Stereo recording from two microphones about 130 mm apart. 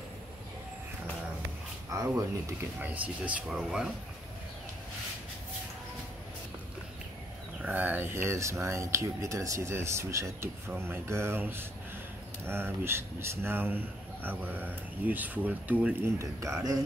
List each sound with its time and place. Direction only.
1.9 s speech: 25° right (ahead or behind)
2.8 s speech: 10° right (ahead or behind)
7.6 s speech: 15° right (ahead or behind)